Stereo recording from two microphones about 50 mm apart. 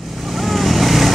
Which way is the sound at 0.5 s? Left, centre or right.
Centre.